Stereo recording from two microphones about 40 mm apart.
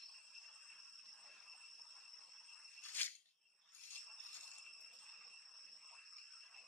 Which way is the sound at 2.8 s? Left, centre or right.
Left.